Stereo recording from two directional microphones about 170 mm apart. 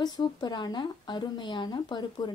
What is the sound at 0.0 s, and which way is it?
Speech, 25° left (ahead or behind).